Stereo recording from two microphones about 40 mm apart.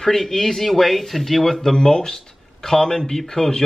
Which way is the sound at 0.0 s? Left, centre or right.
Centre.